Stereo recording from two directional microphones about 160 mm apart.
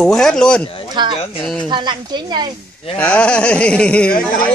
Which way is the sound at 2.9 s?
10° left (ahead or behind).